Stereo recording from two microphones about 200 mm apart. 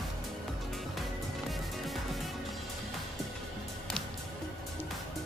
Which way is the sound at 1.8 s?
Centre (ahead or behind).